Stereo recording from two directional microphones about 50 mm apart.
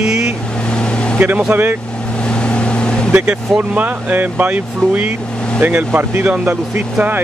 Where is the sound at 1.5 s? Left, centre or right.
Right.